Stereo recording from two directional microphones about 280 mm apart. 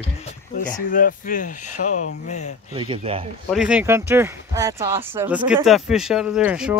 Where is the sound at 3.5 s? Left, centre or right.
Centre.